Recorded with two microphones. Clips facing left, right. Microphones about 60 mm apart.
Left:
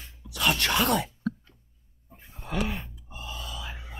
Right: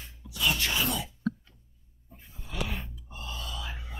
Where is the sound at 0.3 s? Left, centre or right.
Left.